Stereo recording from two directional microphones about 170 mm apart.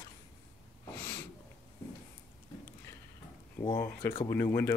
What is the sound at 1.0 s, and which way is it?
Snort, 10° left (ahead or behind).